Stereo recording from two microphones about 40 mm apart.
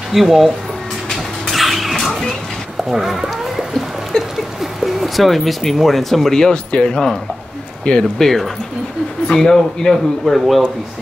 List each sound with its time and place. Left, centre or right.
0.1 s speech: centre
1.1 s a sound: centre
4.1 s rodents: centre
4.7 s speech: centre
6.4 s speech: left
8.2 s speech: centre
10.4 s speech: centre